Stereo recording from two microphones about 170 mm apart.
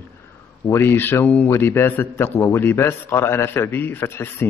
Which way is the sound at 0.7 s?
15° left (ahead or behind).